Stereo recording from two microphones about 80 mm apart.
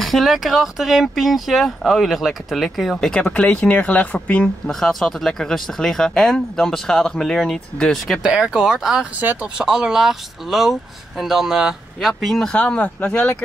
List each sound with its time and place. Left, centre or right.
0.0 s speech: centre
3.1 s speech: centre
4.6 s speech: centre
8.2 s speech: centre
9.2 s speech: right
9.6 s speech: centre